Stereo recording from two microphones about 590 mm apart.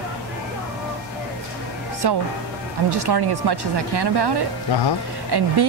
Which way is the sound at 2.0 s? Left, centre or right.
Right.